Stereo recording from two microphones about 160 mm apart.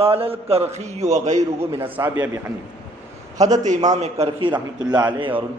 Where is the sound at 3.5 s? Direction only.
45° right (ahead or behind).